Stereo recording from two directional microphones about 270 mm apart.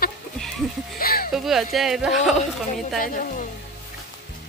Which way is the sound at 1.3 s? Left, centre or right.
Centre.